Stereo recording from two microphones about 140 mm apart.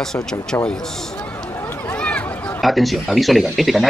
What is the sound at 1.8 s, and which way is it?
A man's voice, 10° left (ahead or behind).